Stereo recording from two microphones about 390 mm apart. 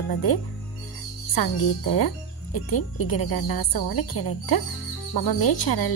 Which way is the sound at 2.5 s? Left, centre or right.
Left.